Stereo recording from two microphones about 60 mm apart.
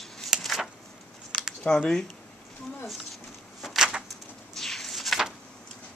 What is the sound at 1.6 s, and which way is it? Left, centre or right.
Speech, centre.